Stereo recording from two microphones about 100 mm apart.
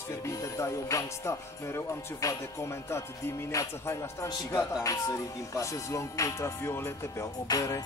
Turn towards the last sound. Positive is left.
turn(degrees=35)  # may be behind; listen again after turning